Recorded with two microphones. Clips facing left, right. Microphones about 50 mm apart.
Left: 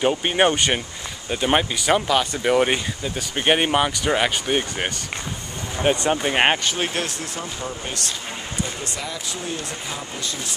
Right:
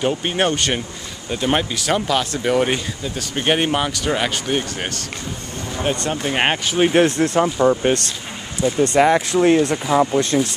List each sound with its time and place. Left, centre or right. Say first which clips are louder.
0.0 s speech: left 1 dB; centre
6.9 s speech: right 12 dB; right
7.6 s speech: right 13 dB; right